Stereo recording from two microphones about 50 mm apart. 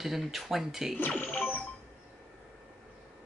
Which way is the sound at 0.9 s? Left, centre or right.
Left.